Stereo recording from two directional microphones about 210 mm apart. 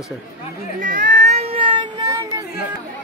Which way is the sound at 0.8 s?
40° right (ahead or behind).